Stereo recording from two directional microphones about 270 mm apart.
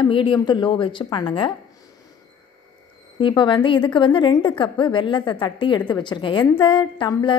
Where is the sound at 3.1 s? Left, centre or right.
Centre.